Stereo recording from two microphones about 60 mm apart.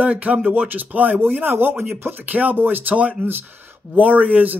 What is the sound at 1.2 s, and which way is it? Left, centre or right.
Speech, right.